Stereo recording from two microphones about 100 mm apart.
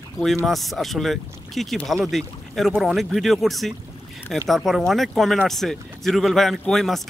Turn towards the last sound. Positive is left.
turn(degrees=5)  # may be behind; listen again after turning